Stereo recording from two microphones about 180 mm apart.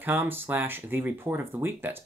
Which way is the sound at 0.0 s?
10° right (ahead or behind).